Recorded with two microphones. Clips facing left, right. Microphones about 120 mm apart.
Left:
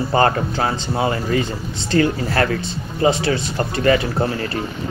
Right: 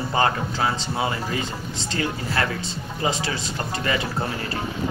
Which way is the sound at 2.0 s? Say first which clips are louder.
Left 8 dB; 40° left (ahead or behind).